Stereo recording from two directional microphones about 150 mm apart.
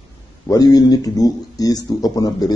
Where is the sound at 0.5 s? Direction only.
25° left (ahead or behind).